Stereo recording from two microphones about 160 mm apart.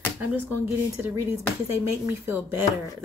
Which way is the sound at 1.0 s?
10° right (ahead or behind).